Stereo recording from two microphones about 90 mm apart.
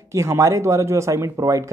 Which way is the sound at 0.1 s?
35° right (ahead or behind).